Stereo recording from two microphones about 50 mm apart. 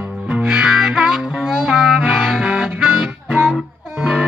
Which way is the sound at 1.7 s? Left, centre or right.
Centre.